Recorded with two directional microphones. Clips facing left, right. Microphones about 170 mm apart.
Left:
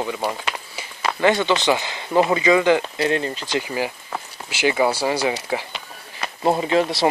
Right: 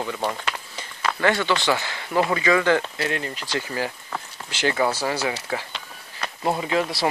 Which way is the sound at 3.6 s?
15° left (ahead or behind).